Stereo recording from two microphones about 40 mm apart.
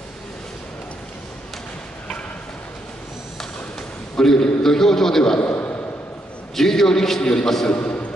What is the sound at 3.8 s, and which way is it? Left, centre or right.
A man's voice, centre.